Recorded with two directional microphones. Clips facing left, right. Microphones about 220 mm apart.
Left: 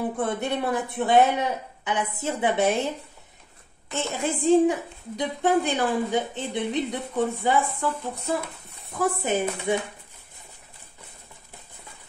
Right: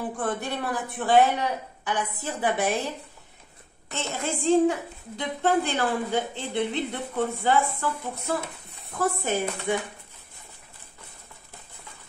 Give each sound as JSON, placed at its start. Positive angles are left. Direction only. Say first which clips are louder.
{"t": 0.2, "sound": "speech", "louder": "left 2 dB", "side_deg": 20}
{"t": 3.9, "sound": "a woman's voice", "louder": "left 3 dB", "side_deg": 15}
{"t": 8.9, "sound": "speech", "louder": "left 2 dB", "side_deg": 20}